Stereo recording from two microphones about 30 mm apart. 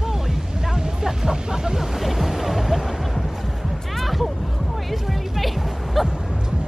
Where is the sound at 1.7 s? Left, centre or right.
Centre.